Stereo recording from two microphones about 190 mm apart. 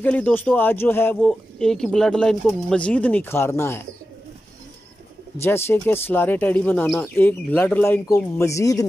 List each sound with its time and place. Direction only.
0.0 s speech: 10° left (ahead or behind)
5.4 s speech: 10° left (ahead or behind)